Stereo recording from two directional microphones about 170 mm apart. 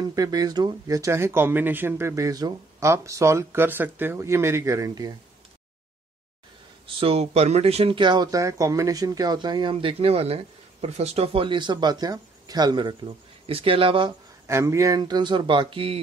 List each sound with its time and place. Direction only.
0.0 s speech: 20° right (ahead or behind)
7.0 s speech: 35° right (ahead or behind)
14.5 s speech: 15° right (ahead or behind)